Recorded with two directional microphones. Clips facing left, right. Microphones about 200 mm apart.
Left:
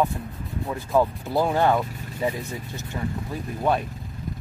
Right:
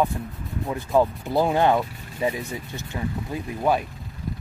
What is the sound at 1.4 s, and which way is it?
Speech, 15° right (ahead or behind).